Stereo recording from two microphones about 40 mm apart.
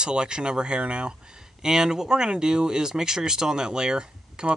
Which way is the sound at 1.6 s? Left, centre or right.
Centre.